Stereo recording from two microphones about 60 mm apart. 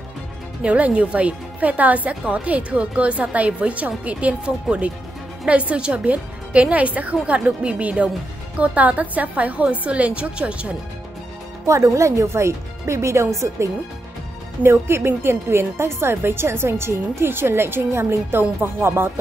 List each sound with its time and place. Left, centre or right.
0.6 s a woman's voice: right
11.6 s speech: right
14.6 s speech: right